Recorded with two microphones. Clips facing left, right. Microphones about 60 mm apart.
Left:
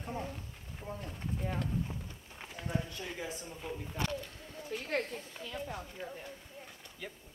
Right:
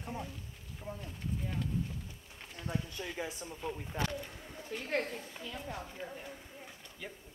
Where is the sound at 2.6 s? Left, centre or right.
Centre.